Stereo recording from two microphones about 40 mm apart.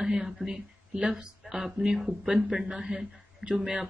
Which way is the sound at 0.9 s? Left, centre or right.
Right.